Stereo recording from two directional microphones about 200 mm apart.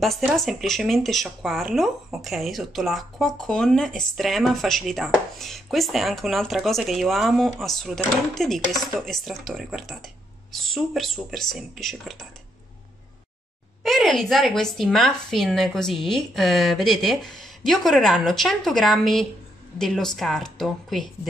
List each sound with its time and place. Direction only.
0.0 s speech: centre (ahead or behind)
13.8 s speech: centre (ahead or behind)